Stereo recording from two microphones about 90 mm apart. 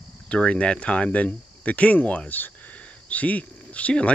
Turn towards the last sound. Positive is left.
turn(degrees=15)  # may be behind; listen again after turning